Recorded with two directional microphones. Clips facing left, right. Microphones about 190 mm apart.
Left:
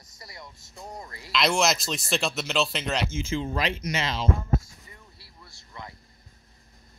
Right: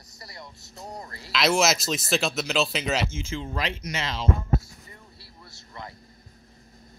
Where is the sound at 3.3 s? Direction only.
10° left (ahead or behind).